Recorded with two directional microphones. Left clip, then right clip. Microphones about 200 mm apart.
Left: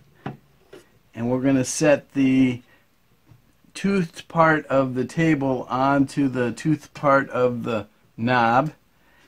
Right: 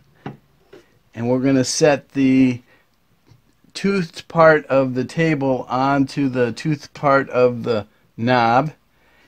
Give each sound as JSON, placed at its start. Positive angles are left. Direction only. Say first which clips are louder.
{"t": 0.2, "sound": "wood", "louder": "right 1 dB", "side_deg": 5}
{"t": 1.1, "sound": "speech", "louder": "right 4 dB", "side_deg": -40}
{"t": 3.7, "sound": "speech", "louder": "right 3 dB", "side_deg": -40}